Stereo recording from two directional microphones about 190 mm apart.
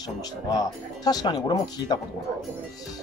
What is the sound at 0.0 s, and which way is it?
Speech, 20° left (ahead or behind).